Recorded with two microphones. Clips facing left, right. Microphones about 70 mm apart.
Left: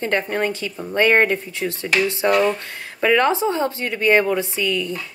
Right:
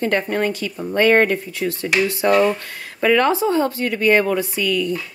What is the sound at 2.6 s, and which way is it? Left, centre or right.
Speech, left.